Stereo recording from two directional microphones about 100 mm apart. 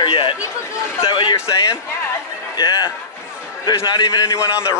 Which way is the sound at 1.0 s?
50° left (ahead or behind).